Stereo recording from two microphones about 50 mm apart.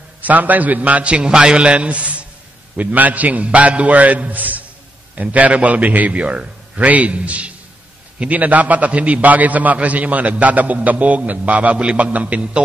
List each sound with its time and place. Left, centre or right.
0.2 s a man's voice: right